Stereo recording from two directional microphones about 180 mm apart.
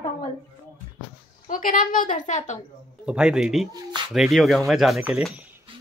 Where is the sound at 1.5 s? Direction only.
50° left (ahead or behind).